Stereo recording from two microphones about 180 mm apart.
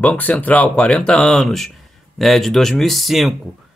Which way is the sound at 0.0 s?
10° left (ahead or behind).